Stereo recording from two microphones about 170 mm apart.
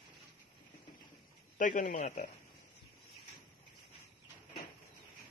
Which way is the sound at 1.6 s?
50° left (ahead or behind).